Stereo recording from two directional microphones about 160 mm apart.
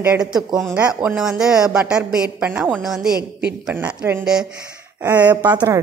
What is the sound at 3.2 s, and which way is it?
Speech, 90° right.